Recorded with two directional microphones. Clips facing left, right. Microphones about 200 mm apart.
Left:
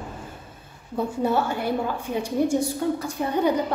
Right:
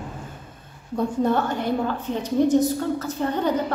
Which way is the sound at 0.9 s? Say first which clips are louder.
Right 2 dB; 10° left (ahead or behind).